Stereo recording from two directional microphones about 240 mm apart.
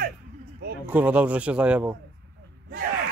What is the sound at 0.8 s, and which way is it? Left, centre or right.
A man's voice, centre.